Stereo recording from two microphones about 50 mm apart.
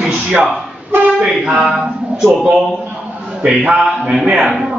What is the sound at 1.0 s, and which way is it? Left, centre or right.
Speech, right.